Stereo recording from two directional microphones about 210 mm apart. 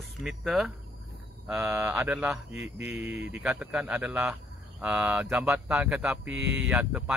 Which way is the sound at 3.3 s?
5° right (ahead or behind).